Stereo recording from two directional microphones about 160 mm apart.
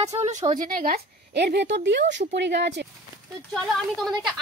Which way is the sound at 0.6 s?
60° right (ahead or behind).